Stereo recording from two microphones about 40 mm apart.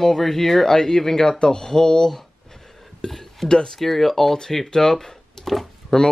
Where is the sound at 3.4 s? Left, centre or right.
Centre.